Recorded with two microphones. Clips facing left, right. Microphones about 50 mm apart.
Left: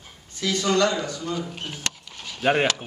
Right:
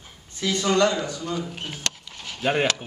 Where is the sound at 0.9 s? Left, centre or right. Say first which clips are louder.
Even; centre.